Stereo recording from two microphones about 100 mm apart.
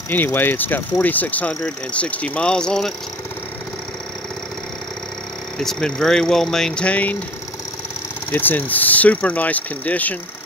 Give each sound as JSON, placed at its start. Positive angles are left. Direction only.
{"t": 0.1, "sound": "speech", "side_deg": 20}
{"t": 5.6, "sound": "speech", "side_deg": 5}
{"t": 8.3, "sound": "speech", "side_deg": 20}